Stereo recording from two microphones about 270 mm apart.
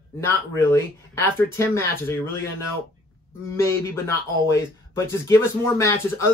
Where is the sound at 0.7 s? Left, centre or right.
Centre.